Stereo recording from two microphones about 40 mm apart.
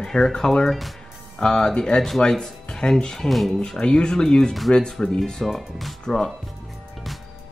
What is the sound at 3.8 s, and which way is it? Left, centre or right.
Speech, centre.